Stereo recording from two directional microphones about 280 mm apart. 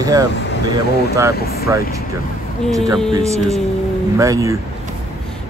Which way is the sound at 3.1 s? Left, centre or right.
Right.